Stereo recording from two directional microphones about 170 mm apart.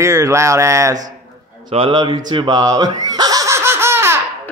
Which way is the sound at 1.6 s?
30° right (ahead or behind).